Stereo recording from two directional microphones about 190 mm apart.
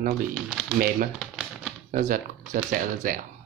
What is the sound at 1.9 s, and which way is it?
Speech, 45° right (ahead or behind).